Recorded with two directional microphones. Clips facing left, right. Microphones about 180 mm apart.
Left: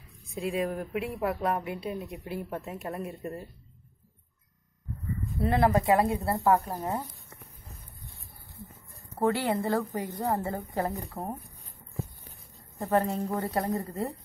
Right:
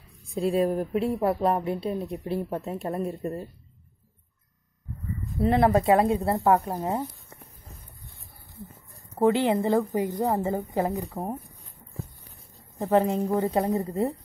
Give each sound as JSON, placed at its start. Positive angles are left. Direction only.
{"t": 0.3, "sound": "speech", "side_deg": -35}
{"t": 5.4, "sound": "speech", "side_deg": -20}
{"t": 9.2, "sound": "a woman's voice", "side_deg": -20}
{"t": 12.7, "sound": "a woman's voice", "side_deg": -15}